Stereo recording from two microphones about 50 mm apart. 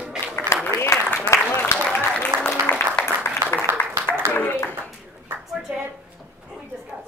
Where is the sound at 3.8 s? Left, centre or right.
Left.